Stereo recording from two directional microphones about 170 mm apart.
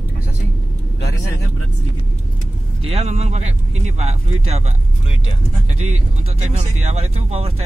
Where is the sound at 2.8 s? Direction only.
40° right (ahead or behind).